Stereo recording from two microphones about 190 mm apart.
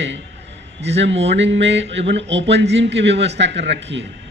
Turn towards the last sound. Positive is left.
turn(degrees=-65)  # may be behind; listen again after turning